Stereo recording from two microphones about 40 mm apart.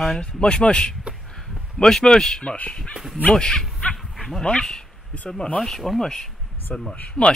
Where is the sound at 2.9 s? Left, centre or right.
Centre.